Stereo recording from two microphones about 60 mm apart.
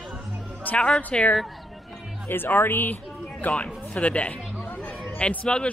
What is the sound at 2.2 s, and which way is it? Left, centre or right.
Speech, left.